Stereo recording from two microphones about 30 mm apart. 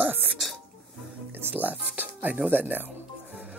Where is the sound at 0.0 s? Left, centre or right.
Right.